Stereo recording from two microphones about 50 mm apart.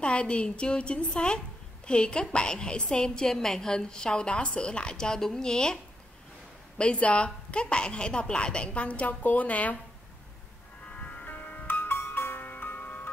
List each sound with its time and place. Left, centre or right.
0.0 s a woman's voice: left
6.8 s a woman's voice: left
10.9 s music: left
11.6 s music: left
12.0 s music: left